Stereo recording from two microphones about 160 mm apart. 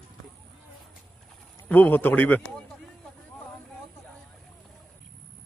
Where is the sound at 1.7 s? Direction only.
10° left (ahead or behind).